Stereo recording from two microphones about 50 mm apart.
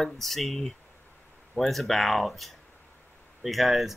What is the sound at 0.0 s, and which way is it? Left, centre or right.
Speech, centre.